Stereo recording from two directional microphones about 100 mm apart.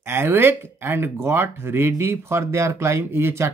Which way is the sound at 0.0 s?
25° right (ahead or behind).